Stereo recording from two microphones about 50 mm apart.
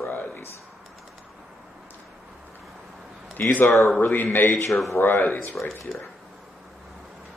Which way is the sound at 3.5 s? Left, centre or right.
Left.